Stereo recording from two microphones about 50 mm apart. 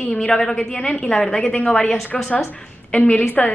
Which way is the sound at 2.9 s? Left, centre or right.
Left.